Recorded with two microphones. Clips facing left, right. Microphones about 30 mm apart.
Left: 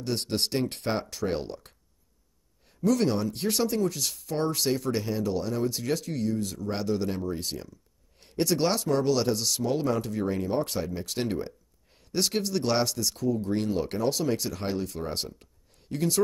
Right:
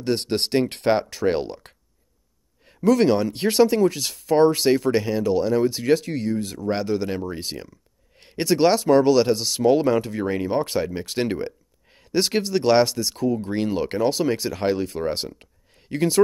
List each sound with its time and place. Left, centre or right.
0.0 s speech: right
2.8 s speech: right